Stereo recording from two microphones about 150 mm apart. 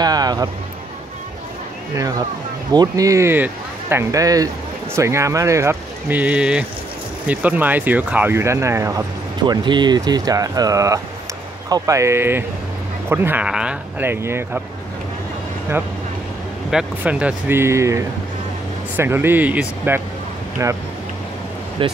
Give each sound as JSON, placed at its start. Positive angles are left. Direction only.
{"t": 0.0, "sound": "speech", "side_deg": -25}
{"t": 2.7, "sound": "speech", "side_deg": -25}
{"t": 9.4, "sound": "speech", "side_deg": -30}
{"t": 16.7, "sound": "speech", "side_deg": -10}